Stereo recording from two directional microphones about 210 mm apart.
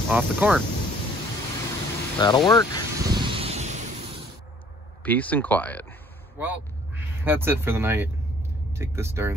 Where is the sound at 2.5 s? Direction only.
15° left (ahead or behind).